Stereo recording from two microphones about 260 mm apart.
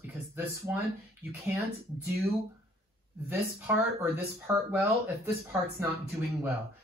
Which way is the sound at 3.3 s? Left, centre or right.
Centre.